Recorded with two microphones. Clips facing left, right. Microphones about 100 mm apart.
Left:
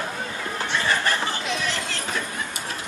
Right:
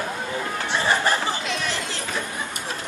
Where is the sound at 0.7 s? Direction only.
20° right (ahead or behind).